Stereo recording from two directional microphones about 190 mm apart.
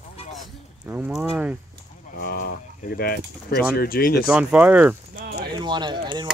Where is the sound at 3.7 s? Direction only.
50° left (ahead or behind).